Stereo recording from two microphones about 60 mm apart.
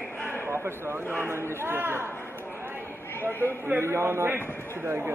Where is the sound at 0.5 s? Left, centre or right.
Right.